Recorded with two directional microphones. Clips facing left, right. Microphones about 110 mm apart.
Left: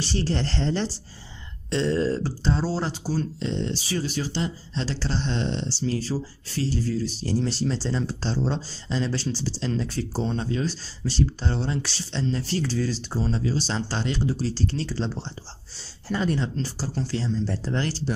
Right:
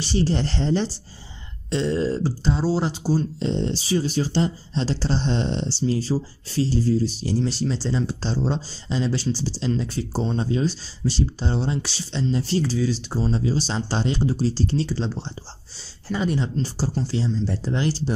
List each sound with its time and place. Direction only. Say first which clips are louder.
0.0 s speech: right 4 dB; 10° right (ahead or behind)
7.2 s speech: right 1 dB; 5° right (ahead or behind); by 12.6 s 20° right (ahead or behind)
12.6 s speech: right 3 dB; 5° right (ahead or behind)
14.9 s speech: right 2 dB; 5° right (ahead or behind)
16.6 s speech: right 5 dB; 25° right (ahead or behind)
16.9 s speech: even; 10° right (ahead or behind)